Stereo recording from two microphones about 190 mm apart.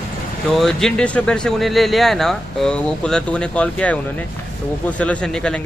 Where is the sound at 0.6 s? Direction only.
Centre (ahead or behind).